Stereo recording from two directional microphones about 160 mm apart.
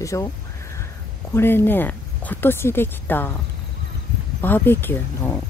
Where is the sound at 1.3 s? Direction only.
15° left (ahead or behind).